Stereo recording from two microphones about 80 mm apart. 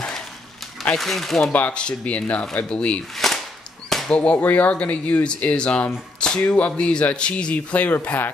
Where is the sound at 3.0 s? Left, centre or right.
Centre.